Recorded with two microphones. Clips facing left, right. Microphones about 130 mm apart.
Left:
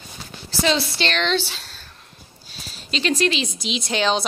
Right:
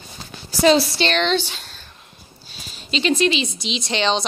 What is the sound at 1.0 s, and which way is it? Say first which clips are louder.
Speech: right 3 dB; centre (ahead or behind).